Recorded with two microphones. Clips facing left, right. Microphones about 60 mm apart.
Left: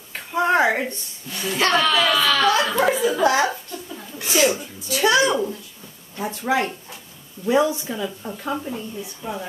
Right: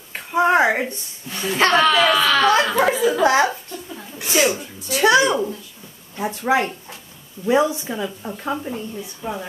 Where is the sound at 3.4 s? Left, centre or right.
Centre.